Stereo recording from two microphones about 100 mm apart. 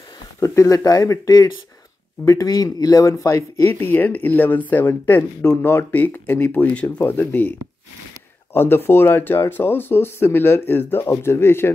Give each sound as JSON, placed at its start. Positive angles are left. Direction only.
{"t": 0.4, "sound": "speech", "side_deg": 30}
{"t": 8.5, "sound": "speech", "side_deg": 20}